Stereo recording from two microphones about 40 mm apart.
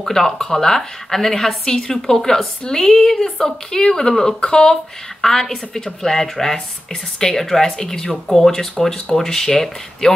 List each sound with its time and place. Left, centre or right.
0.0 s speech: centre